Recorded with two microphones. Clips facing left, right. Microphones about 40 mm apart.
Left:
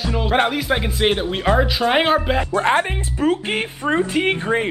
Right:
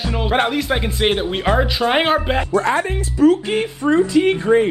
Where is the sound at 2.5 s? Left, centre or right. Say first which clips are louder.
Even; left.